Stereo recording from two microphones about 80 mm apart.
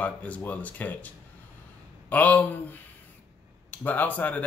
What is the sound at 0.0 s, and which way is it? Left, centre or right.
Speech, centre.